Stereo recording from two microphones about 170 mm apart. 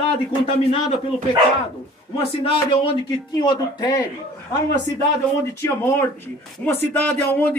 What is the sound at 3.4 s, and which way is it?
Speech, 25° left (ahead or behind).